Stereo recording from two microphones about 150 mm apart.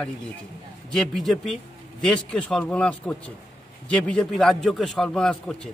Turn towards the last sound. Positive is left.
turn(degrees=5)  # may be behind; listen again after turning